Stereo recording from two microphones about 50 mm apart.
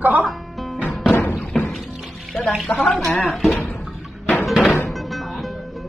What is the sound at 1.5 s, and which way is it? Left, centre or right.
Music, centre.